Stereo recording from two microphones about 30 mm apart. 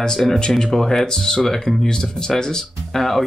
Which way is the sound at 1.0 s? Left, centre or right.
Left.